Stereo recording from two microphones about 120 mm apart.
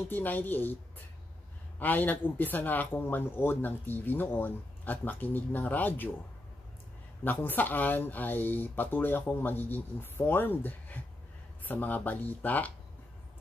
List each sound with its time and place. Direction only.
0.1 s speech: 15° left (ahead or behind)
7.2 s speech: 15° left (ahead or behind)